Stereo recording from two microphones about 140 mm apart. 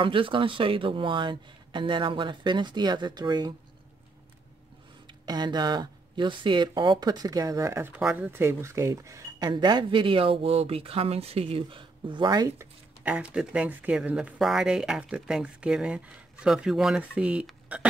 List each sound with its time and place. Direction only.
0.0 s speech: 40° right (ahead or behind)
5.2 s speech: 30° right (ahead or behind)
13.1 s speech: 5° right (ahead or behind)